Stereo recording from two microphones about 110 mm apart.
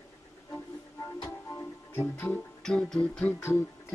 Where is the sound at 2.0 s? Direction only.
20° left (ahead or behind).